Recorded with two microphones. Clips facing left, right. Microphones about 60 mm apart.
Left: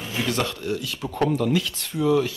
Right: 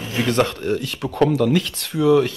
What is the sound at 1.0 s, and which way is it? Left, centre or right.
Speech, right.